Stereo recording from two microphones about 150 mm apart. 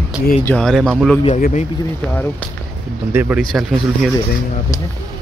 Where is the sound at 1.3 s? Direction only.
50° left (ahead or behind).